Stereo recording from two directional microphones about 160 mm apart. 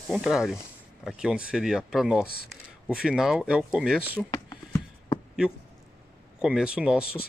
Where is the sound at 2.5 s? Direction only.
5° right (ahead or behind).